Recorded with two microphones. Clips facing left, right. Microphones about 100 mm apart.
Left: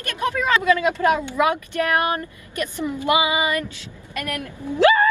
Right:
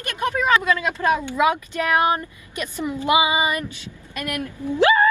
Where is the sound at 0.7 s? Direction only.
15° left (ahead or behind).